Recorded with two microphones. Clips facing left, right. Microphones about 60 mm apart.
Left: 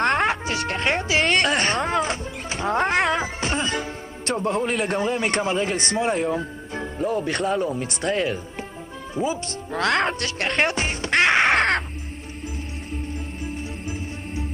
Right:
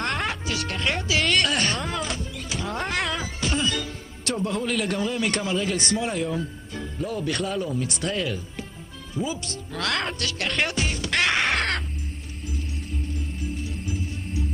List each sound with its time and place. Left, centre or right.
0.2 s speech: left
3.0 s speech: left
6.7 s speech: left
11.1 s crow: left